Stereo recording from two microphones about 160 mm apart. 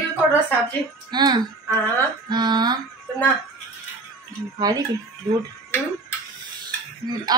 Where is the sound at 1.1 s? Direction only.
25° right (ahead or behind).